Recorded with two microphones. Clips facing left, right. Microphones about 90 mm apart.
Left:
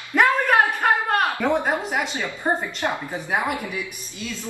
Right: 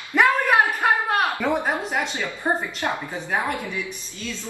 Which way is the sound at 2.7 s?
15° left (ahead or behind).